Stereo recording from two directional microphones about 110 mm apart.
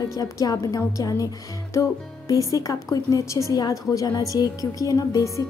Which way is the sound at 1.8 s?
30° left (ahead or behind).